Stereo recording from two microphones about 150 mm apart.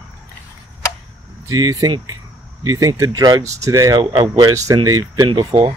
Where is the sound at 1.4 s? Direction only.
25° right (ahead or behind).